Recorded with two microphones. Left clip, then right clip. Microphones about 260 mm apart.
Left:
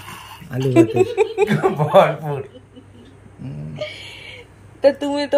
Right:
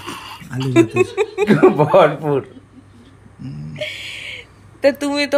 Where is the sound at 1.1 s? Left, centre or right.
Right.